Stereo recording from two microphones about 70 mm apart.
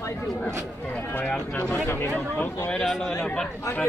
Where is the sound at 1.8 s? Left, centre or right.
Left.